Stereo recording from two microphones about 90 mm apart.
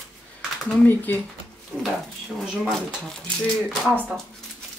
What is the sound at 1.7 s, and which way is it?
Speech, 5° right (ahead or behind).